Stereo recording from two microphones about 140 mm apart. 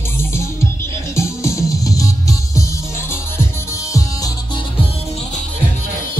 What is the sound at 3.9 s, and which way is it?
Music, 25° left (ahead or behind).